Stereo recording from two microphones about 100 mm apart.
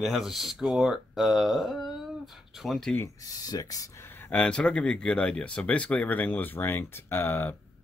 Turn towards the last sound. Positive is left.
turn(degrees=20)  # may be behind; listen again after turning